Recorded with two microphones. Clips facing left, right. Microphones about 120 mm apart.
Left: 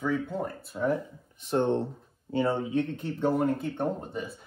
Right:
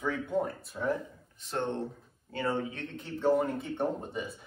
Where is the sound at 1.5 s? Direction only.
25° left (ahead or behind).